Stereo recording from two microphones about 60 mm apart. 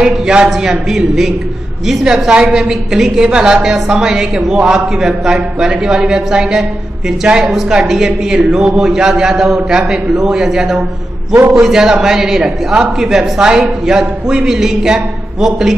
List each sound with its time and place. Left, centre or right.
0.0 s a woman's voice: centre